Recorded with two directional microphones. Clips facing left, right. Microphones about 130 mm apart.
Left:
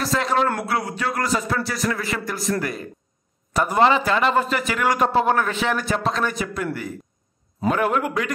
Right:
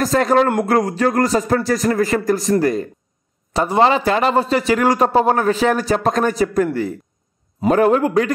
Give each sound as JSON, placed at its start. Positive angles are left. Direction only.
{"t": 0.0, "sound": "a man's voice", "side_deg": -45}